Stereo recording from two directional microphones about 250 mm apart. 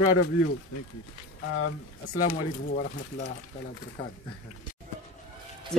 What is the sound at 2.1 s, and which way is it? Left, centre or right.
Speech, left.